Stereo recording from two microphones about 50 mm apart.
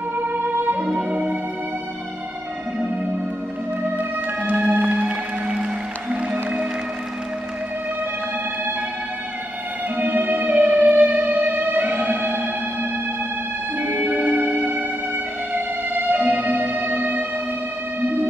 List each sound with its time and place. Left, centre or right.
0.3 s music: right
0.9 s music: right
4.5 s music: right
9.9 s music: right
13.7 s music: right
14.1 s music: right